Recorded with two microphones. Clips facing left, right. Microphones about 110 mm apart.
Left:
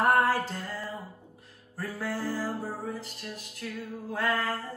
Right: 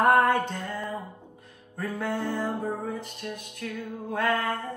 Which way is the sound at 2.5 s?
25° right (ahead or behind).